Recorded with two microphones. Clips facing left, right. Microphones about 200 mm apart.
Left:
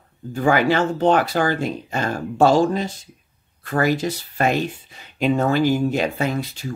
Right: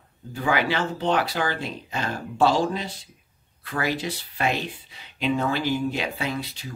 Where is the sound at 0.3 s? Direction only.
45° left (ahead or behind).